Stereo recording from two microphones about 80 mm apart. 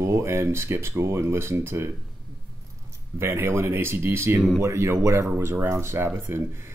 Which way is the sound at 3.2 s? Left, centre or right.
Right.